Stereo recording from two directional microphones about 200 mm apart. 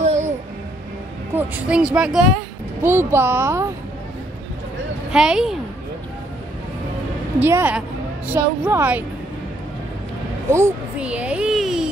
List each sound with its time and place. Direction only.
0.0 s music: 35° right (ahead or behind)
1.3 s speech: 5° right (ahead or behind)
5.1 s speech: 5° right (ahead or behind)
7.3 s speech: 10° right (ahead or behind)
10.5 s speech: 10° right (ahead or behind)